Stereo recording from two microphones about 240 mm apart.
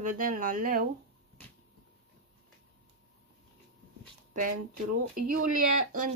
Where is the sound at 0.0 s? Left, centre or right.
Right.